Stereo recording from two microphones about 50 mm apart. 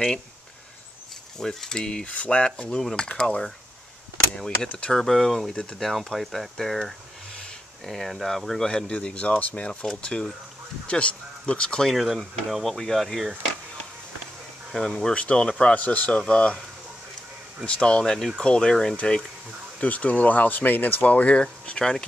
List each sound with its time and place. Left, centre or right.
1.4 s mechanisms: centre
4.9 s speech: centre
8.6 s speech: centre
9.7 s speech: centre
11.9 s speech: centre
14.7 s speech: centre
15.1 s speech: left
17.6 s speech: left
18.4 s mechanisms: centre
18.9 s speech: centre